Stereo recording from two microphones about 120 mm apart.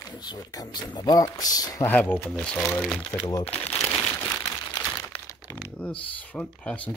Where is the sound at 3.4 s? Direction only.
60° left (ahead or behind).